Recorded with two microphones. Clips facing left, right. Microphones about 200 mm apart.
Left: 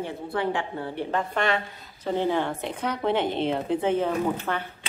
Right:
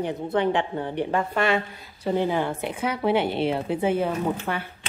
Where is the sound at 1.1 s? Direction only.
5° right (ahead or behind).